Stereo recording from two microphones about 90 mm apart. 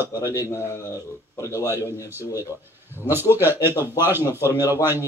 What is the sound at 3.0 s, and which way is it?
Speech, 25° right (ahead or behind).